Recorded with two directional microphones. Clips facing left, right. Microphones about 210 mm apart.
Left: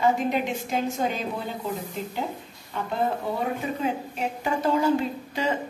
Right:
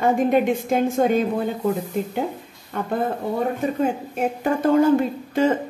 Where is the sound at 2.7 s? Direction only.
50° right (ahead or behind).